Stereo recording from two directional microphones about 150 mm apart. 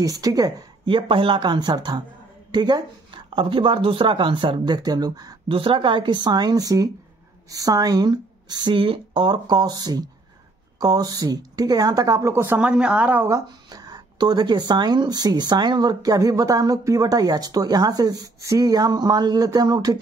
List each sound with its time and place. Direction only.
0.0 s speech: 25° right (ahead or behind)
13.7 s speech: 25° right (ahead or behind)